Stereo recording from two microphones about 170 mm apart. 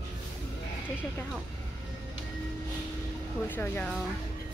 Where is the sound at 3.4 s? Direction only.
10° left (ahead or behind).